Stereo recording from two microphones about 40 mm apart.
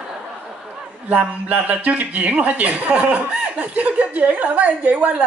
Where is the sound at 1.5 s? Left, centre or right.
Right.